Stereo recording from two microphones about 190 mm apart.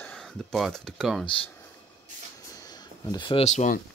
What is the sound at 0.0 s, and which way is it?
Speech, 5° left (ahead or behind).